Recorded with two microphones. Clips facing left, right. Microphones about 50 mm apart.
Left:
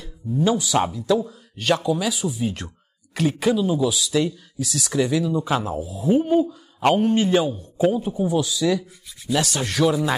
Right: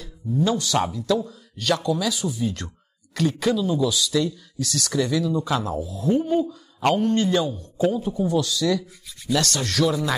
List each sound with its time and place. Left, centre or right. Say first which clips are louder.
0.4 s speech: left 2 dB; centre